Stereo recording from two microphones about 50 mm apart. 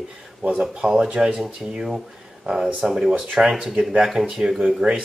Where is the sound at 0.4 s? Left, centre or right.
Centre.